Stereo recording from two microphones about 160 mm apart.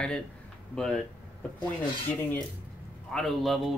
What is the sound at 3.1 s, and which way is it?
Speech, 5° left (ahead or behind).